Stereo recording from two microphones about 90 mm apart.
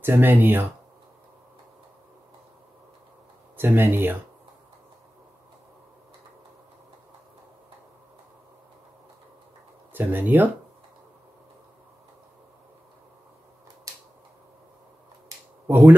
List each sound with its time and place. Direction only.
0.0 s speech: 25° right (ahead or behind)
3.5 s speech: 25° right (ahead or behind)
9.9 s speech: 20° right (ahead or behind)
15.6 s speech: 20° right (ahead or behind)